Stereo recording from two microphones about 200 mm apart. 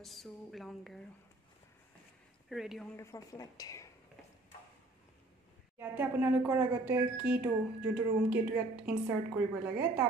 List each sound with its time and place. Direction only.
0.0 s a woman's voice: centre (ahead or behind)
2.5 s speech: centre (ahead or behind)
3.0 s a woman's voice: 15° left (ahead or behind)
5.8 s a woman's voice: 10° right (ahead or behind)